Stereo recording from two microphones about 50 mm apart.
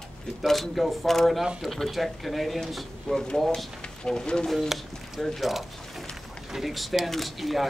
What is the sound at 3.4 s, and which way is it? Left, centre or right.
Speech, centre.